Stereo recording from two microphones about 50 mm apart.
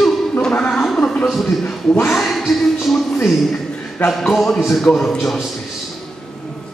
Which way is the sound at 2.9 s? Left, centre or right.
Centre.